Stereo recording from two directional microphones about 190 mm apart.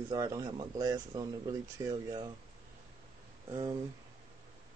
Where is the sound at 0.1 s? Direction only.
20° right (ahead or behind).